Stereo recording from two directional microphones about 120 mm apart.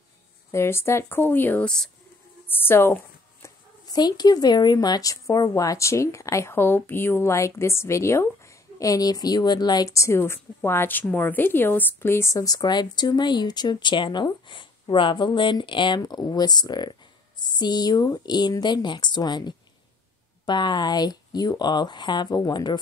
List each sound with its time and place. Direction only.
0.5 s speech: 20° left (ahead or behind)
2.4 s speech: 15° left (ahead or behind)
3.4 s speech: 35° left (ahead or behind)